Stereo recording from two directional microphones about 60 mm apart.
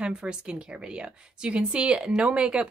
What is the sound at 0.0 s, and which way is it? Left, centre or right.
A woman's voice, centre.